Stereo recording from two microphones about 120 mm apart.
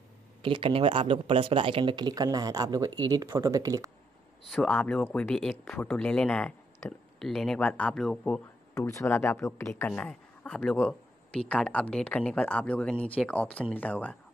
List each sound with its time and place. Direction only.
0.4 s speech: 45° right (ahead or behind); by 3.9 s 30° right (ahead or behind)
4.5 s speech: 5° left (ahead or behind)
5.0 s speech: 20° left (ahead or behind)
5.3 s speech: 5° left (ahead or behind)
8.7 s speech: 25° left (ahead or behind)
10.0 s speech: 5° left (ahead or behind)